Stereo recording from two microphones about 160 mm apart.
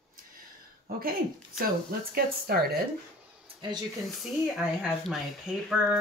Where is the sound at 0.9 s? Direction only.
65° right (ahead or behind).